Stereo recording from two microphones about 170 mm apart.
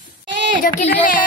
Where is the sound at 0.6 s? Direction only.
50° left (ahead or behind).